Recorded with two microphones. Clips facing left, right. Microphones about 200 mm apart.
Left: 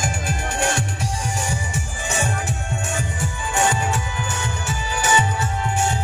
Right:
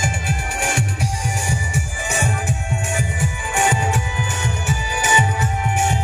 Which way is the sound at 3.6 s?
15° right (ahead or behind).